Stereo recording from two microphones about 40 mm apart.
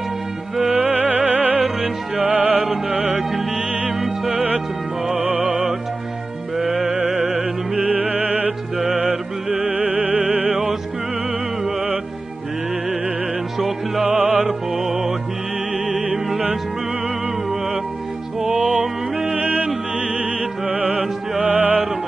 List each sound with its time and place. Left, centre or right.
0.7 s music: right
1.8 s music: right
2.3 s music: right
4.3 s music: right
6.5 s music: centre
7.1 s music: right
13.6 s music: centre
14.0 s music: right
14.7 s music: centre
19.3 s music: right